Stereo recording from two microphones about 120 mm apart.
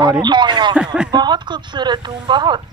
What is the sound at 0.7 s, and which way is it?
Speech, 5° right (ahead or behind).